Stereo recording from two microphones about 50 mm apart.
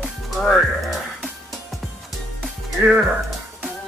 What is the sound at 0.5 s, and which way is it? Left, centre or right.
Music, centre.